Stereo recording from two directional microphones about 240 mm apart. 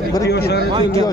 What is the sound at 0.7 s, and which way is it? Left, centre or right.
Speech, right.